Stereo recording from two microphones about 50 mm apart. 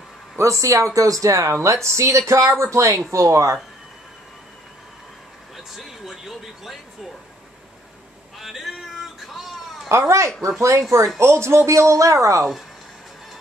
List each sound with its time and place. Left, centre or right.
0.4 s speech: right
5.6 s speech: centre
8.4 s music: centre
9.8 s speech: right
11.1 s speech: right